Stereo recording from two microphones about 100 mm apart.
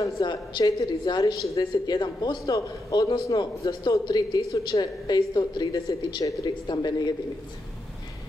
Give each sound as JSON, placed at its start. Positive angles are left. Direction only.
{"t": 0.2, "sound": "a woman's voice", "side_deg": 45}
{"t": 1.6, "sound": "a man's voice", "side_deg": 45}